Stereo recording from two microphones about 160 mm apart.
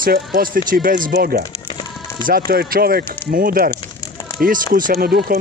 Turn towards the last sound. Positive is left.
turn(degrees=-75)  # may be behind; listen again after turning